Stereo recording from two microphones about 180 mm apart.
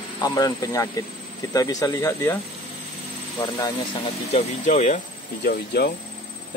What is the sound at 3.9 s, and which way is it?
Speech, 35° left (ahead or behind).